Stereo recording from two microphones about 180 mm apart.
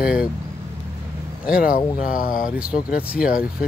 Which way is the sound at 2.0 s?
50° left (ahead or behind).